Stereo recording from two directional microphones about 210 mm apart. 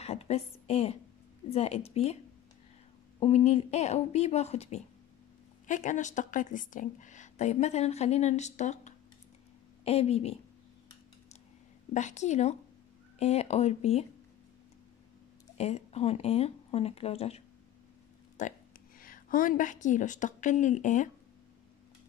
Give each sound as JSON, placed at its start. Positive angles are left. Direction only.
{"t": 0.0, "sound": "a sound", "side_deg": 30}
{"t": 1.5, "sound": "speech", "side_deg": 30}
{"t": 3.2, "sound": "a woman's voice", "side_deg": 30}
{"t": 11.9, "sound": "a woman's voice", "side_deg": 35}
{"t": 15.5, "sound": "speech", "side_deg": 30}
{"t": 18.4, "sound": "a woman's voice", "side_deg": 35}